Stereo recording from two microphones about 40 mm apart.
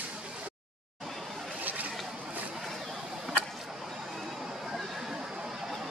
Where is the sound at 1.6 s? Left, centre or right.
Right.